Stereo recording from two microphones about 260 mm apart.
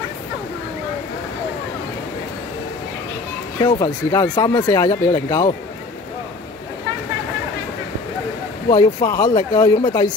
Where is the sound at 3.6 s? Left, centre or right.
Centre.